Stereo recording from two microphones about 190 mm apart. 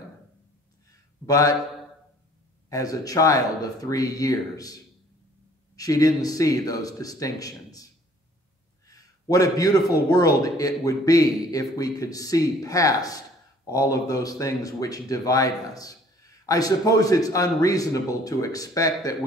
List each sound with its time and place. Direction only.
1.2 s speech: 20° left (ahead or behind)
2.7 s speech: 20° left (ahead or behind)
5.8 s speech: 20° left (ahead or behind)
8.8 s a sound: 20° left (ahead or behind)
10.0 s speech: 20° left (ahead or behind)